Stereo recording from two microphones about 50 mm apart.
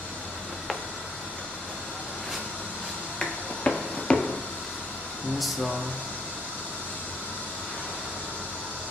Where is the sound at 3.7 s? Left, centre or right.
Centre.